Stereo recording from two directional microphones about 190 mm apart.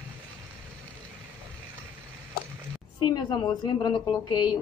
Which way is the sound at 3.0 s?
25° left (ahead or behind).